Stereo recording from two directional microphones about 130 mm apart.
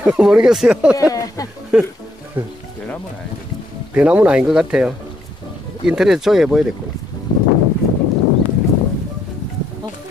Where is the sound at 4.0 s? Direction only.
10° right (ahead or behind).